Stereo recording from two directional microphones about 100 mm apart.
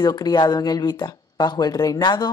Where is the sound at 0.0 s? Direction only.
40° left (ahead or behind).